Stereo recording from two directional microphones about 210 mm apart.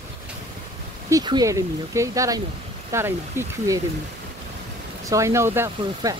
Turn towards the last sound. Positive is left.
turn(degrees=-15)  # may be behind; listen again after turning